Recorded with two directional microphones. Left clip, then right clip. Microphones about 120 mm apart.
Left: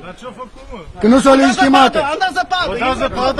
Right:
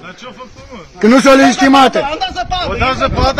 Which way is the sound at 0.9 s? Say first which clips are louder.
Right 3 dB; 30° right (ahead or behind).